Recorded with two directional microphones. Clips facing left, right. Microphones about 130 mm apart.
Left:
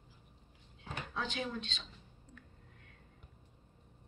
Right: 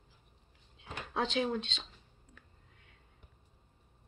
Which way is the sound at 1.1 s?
90° right.